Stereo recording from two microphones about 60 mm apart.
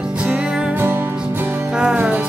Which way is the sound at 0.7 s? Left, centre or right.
Right.